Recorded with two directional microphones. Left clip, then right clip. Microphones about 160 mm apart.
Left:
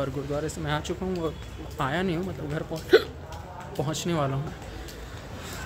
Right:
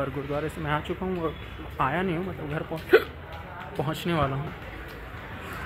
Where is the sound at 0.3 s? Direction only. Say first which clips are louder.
Right 1 dB; 15° left (ahead or behind).